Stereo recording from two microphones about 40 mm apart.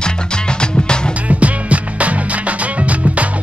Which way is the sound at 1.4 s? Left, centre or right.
Right.